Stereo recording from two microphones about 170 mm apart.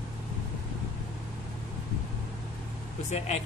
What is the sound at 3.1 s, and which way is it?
Speech, 40° left (ahead or behind).